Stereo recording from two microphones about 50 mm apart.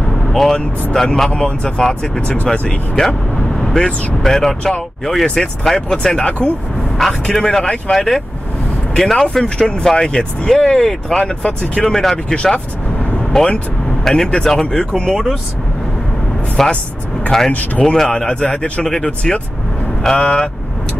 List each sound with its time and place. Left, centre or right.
0.1 s vehicle: centre
0.9 s speech: centre
2.5 s speech: left
3.5 s speech: centre
11.6 s speech: left
11.9 s speech: centre
12.5 s vehicle: left
13.3 s speech: centre
16.6 s speech: centre
17.5 s speech: left
17.8 s speech: centre
18.1 s speech: centre